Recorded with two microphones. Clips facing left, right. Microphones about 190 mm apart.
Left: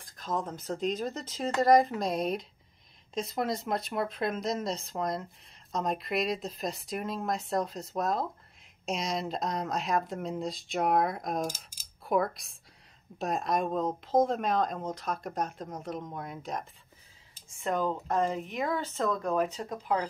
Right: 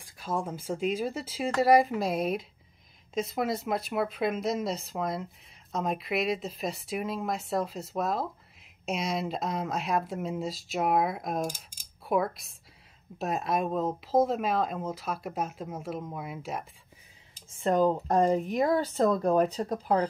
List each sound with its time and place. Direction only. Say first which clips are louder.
0.0 s speech: right 1 dB; 10° right (ahead or behind)
17.6 s speech: right 6 dB; 35° right (ahead or behind)